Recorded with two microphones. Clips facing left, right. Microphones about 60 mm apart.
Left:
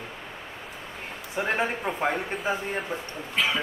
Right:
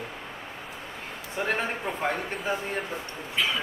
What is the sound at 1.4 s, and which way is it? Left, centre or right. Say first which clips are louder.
Speech: left 2 dB; centre.